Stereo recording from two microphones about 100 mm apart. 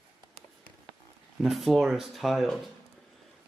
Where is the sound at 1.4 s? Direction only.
Centre (ahead or behind).